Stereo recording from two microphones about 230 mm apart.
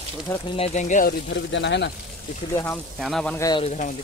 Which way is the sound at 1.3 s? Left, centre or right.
Left.